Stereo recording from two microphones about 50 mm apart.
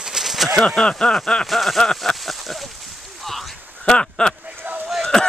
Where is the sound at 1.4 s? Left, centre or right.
Centre.